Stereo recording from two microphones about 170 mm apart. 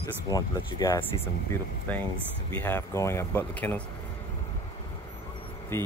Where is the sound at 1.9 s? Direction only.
10° left (ahead or behind).